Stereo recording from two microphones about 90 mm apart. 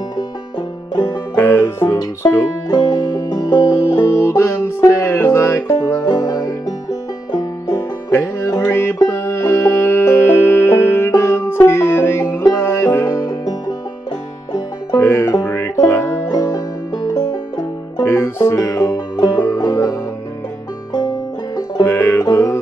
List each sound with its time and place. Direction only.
1.3 s music: 25° left (ahead or behind)
2.0 s music: 45° left (ahead or behind)
4.2 s music: 30° left (ahead or behind)
6.0 s music: 45° left (ahead or behind)
8.1 s music: 25° left (ahead or behind); by 13.7 s 45° left (ahead or behind)
15.0 s music: 25° left (ahead or behind)
15.2 s music: 40° left (ahead or behind)
15.5 s music: 30° left (ahead or behind)
16.3 s music: 45° left (ahead or behind)
18.0 s music: 25° left (ahead or behind)
18.6 s music: 45° left (ahead or behind)
21.8 s music: 25° left (ahead or behind)
22.2 s music: 40° left (ahead or behind)